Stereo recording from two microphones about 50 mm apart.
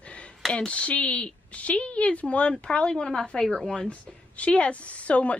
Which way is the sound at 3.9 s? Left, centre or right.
Left.